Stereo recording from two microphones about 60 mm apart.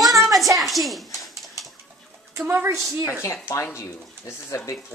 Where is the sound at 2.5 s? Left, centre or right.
Right.